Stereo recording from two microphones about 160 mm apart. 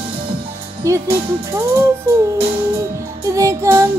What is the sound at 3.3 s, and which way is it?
Music, 20° right (ahead or behind).